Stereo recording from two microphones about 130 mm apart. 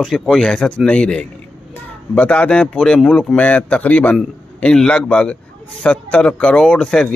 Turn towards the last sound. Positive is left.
turn(degrees=5)  # may be behind; listen again after turning